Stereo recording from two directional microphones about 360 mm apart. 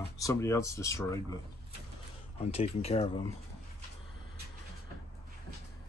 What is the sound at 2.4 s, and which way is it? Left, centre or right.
Speech, centre.